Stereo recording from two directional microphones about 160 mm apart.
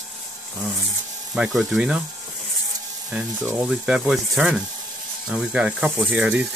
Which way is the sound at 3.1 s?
5° right (ahead or behind).